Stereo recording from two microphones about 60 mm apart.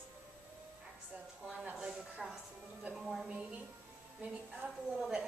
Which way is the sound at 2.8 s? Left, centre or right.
Centre.